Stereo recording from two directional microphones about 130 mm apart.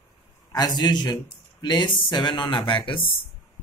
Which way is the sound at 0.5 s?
30° left (ahead or behind).